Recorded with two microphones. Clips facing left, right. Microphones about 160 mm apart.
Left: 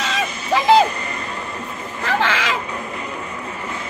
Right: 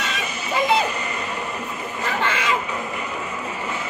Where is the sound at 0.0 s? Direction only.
90° left.